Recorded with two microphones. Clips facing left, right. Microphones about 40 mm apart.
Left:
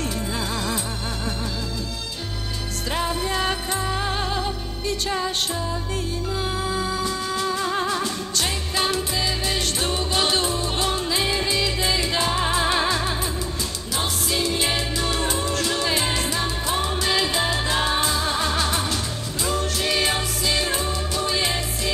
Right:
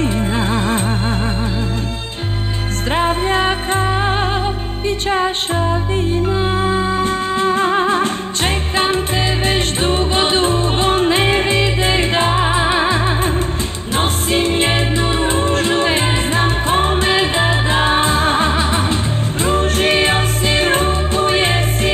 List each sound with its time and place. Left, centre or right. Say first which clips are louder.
0.0 s music: right 9 dB; right
2.9 s music: right 9 dB; right